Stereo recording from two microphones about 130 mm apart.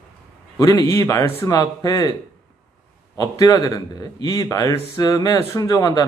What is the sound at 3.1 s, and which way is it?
A man's voice, 30° left (ahead or behind).